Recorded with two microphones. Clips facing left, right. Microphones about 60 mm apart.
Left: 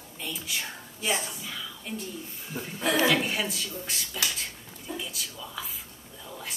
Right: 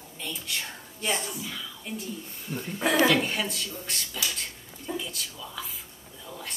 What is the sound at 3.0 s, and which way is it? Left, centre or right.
A woman's voice, centre.